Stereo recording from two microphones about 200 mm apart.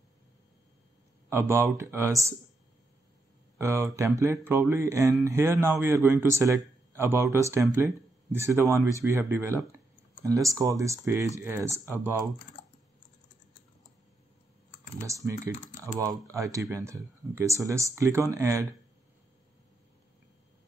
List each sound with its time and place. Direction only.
1.3 s speech: 15° right (ahead or behind)
3.5 s speech: 15° right (ahead or behind)
15.0 s speech: 15° right (ahead or behind)